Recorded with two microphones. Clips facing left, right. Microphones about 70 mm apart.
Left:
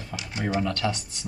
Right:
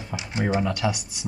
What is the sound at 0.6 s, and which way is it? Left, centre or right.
Speech, centre.